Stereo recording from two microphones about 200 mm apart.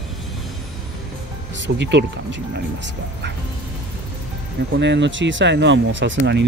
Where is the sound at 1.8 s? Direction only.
60° right (ahead or behind).